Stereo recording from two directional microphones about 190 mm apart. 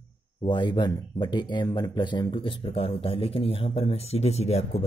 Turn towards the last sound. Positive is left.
turn(degrees=35)  # may be behind; listen again after turning